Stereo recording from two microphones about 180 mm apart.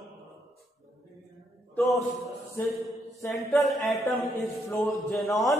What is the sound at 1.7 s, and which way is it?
Chant, centre (ahead or behind).